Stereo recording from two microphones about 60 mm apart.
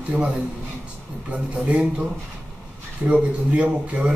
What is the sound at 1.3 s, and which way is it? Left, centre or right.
Speech, right.